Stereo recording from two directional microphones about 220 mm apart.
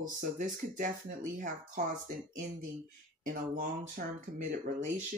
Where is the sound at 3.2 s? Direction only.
40° right (ahead or behind).